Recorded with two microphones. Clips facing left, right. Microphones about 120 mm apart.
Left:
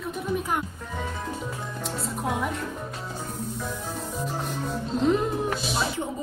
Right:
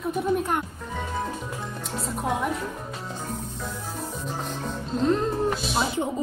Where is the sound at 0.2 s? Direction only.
Centre (ahead or behind).